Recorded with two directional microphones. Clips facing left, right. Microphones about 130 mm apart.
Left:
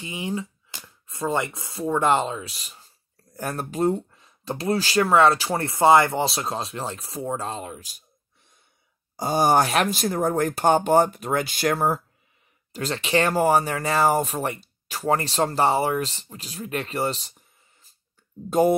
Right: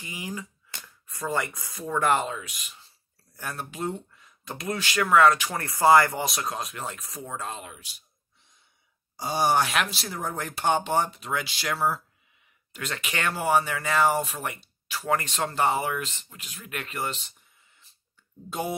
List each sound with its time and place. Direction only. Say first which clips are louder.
0.0 s speech: left 7 dB; 25° left (ahead or behind)
9.1 s speech: left 4 dB; 45° left (ahead or behind)
12.7 s speech: left 10 dB; 30° left (ahead or behind)
18.5 s speech: left 12 dB; 45° left (ahead or behind)